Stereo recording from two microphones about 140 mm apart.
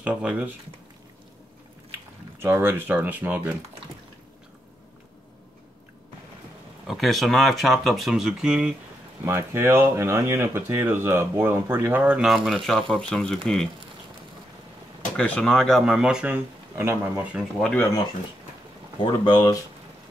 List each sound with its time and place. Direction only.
0.0 s speech: 5° right (ahead or behind)
2.4 s speech: 15° right (ahead or behind)
6.9 s speech: centre (ahead or behind)
9.2 s speech: 20° right (ahead or behind); by 13.4 s 5° left (ahead or behind)
15.1 s speech: 10° left (ahead or behind); by 17.4 s 15° right (ahead or behind)
17.6 s speech: 5° left (ahead or behind)
19.3 s speech: 30° left (ahead or behind)